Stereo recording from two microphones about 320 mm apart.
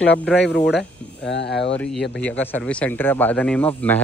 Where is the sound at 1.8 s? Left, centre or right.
Centre.